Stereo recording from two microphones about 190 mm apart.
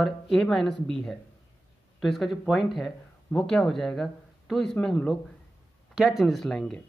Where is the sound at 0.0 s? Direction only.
Centre (ahead or behind).